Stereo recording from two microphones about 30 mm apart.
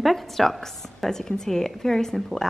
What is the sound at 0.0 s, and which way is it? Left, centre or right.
A woman's voice, centre.